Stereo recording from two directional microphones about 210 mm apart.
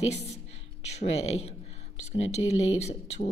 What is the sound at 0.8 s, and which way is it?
Speech, 30° left (ahead or behind).